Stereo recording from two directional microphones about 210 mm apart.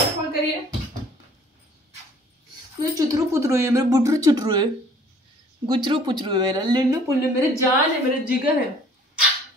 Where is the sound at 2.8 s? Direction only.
15° right (ahead or behind).